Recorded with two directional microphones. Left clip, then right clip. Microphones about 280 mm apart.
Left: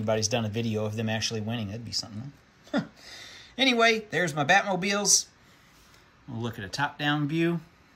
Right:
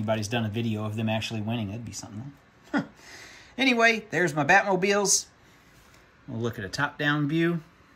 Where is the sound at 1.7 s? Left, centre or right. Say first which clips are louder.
Left 6 dB; left.